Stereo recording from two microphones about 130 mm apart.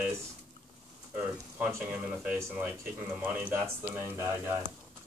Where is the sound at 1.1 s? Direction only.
15° right (ahead or behind).